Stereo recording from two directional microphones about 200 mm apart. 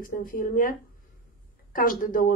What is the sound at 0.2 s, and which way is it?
Speech, 45° left (ahead or behind).